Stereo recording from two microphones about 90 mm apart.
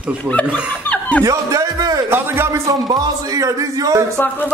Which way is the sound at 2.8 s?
45° right (ahead or behind).